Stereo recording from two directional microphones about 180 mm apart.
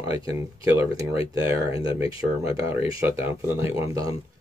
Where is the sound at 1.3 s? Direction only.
20° right (ahead or behind).